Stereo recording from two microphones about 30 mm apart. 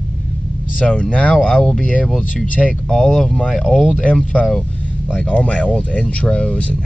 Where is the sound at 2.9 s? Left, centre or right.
Left.